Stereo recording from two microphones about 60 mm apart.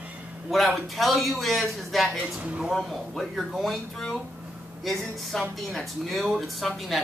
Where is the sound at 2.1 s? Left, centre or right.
Right.